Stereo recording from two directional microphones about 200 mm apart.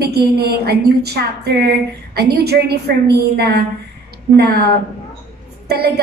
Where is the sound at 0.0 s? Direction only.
50° right (ahead or behind).